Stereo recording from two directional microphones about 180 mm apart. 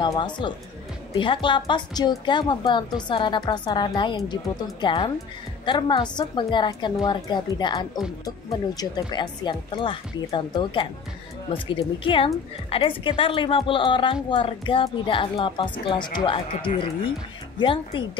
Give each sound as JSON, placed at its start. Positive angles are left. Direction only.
{"t": 0.0, "sound": "a woman's voice", "side_deg": 25}